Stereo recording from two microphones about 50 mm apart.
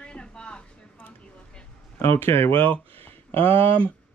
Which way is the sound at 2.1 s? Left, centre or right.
Left.